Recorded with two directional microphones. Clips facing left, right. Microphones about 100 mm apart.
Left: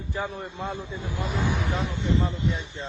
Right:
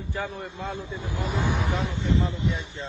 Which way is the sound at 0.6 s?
15° left (ahead or behind).